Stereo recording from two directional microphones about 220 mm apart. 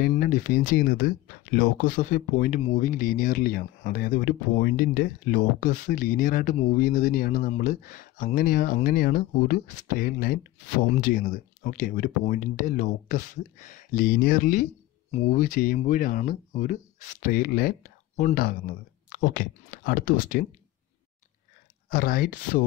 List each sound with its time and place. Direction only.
0.0 s speech: 40° left (ahead or behind)
21.8 s speech: 40° left (ahead or behind)